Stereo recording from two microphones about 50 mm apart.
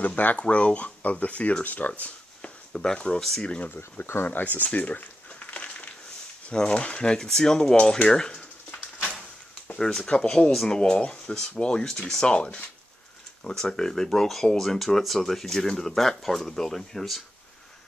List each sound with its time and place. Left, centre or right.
0.0 s speech: left; by 3.4 s centre
4.0 s speech: left
4.6 s a sound: left
6.5 s speech: left
7.8 s a sound: centre
10.0 s speech: left; by 17.2 s centre